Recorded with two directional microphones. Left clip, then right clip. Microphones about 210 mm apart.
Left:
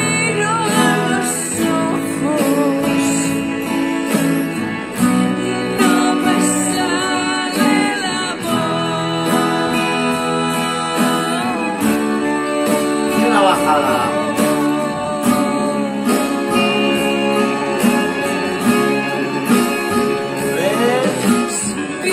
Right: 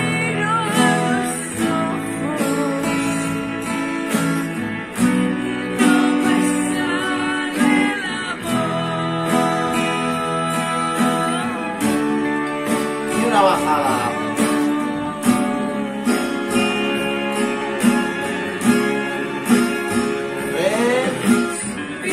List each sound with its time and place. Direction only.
7.5 s music: 45° left (ahead or behind)
13.3 s music: centre (ahead or behind)